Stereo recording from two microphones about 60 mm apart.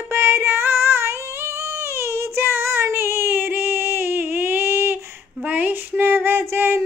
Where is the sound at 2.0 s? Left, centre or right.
Right.